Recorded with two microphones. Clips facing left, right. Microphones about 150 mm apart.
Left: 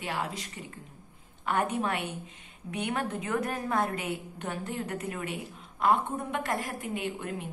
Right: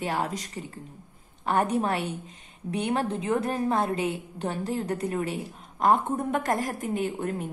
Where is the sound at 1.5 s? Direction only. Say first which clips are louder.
Right 4 dB; 35° right (ahead or behind).